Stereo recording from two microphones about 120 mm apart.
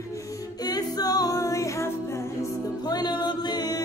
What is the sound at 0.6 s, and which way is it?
A capella, 35° left (ahead or behind).